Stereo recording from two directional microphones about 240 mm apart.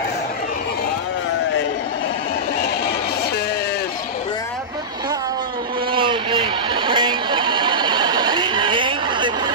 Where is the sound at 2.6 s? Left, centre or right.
Left.